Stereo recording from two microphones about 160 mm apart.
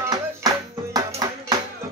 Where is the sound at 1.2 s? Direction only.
25° right (ahead or behind).